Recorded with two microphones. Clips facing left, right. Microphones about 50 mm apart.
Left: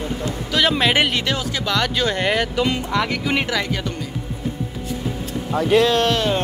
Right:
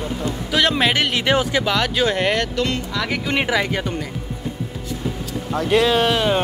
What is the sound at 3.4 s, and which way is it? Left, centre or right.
Speech, centre.